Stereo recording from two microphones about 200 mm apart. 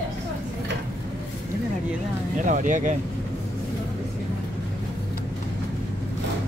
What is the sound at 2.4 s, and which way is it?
Speech, 40° right (ahead or behind).